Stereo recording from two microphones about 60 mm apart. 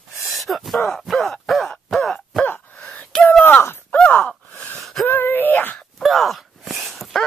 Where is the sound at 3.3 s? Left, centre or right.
Left.